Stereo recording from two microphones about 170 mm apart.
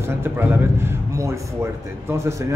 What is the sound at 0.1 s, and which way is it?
A man's voice, 15° right (ahead or behind).